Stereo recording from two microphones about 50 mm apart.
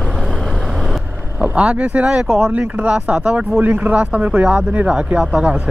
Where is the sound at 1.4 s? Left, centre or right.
Right.